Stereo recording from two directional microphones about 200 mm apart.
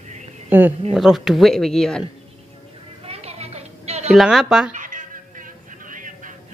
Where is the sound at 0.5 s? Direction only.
10° right (ahead or behind).